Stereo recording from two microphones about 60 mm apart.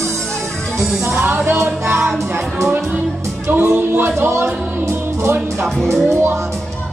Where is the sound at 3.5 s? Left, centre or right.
Right.